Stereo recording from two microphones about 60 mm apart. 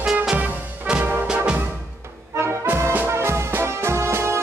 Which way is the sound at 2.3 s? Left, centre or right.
Right.